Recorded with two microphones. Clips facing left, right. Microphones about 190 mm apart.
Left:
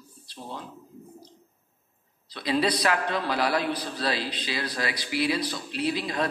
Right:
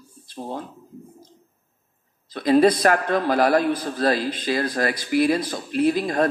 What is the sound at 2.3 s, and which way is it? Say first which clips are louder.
A man's voice: right 9 dB; 50° right (ahead or behind).